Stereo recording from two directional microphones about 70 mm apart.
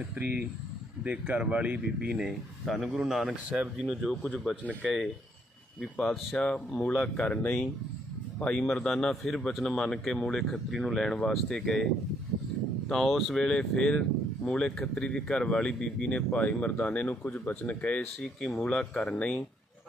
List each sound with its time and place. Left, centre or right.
0.2 s speech: right
2.6 s a man's voice: centre
2.9 s a man's voice: centre
3.4 s speech: centre
4.0 s a man's voice: centre
5.8 s a man's voice: centre
12.9 s speech: centre